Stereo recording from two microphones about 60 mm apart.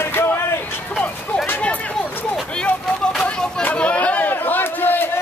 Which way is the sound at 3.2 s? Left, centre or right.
Centre.